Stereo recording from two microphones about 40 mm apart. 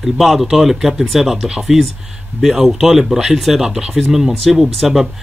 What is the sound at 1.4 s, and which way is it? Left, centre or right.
Speech, centre.